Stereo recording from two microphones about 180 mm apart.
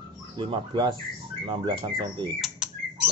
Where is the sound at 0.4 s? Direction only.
25° right (ahead or behind).